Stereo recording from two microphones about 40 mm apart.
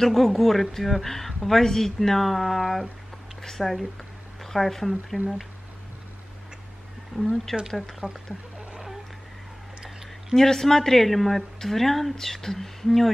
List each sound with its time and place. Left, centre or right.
0.0 s speech: centre
5.1 s speech: right
7.2 s speech: centre
8.0 s speech: right
9.8 s speech: centre